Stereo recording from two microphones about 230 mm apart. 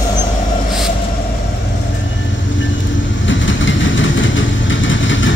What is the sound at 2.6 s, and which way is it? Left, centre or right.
Vehicle, left.